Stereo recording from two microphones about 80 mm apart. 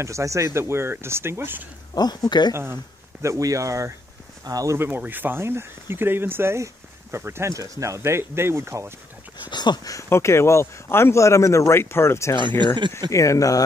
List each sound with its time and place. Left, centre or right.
0.0 s speech: right
2.0 s speech: left
2.5 s speech: right
4.7 s speech: right
7.5 s speech: right
9.5 s speech: left
10.0 s speech: left
12.4 s speech: right
13.1 s speech: left